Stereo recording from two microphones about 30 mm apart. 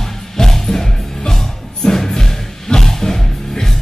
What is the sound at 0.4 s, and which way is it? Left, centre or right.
Music, centre.